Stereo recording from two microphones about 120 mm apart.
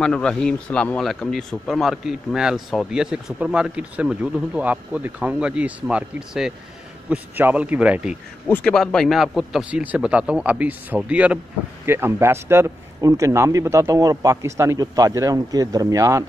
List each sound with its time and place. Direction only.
0.0 s a man's voice: 5° left (ahead or behind); by 8.2 s 10° right (ahead or behind)
8.5 s a man's voice: 5° left (ahead or behind); by 16.3 s 25° right (ahead or behind)